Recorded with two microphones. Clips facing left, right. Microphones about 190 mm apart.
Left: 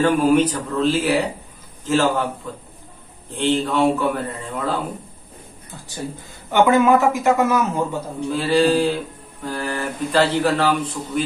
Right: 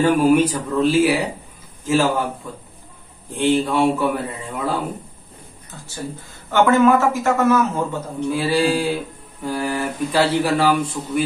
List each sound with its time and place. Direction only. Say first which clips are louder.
0.0 s speech: right 1 dB; 10° right (ahead or behind)
3.3 s speech: right 1 dB; 10° right (ahead or behind)
6.5 s a man's voice: even; 15° left (ahead or behind)
8.3 s speech: left 2 dB; 10° right (ahead or behind)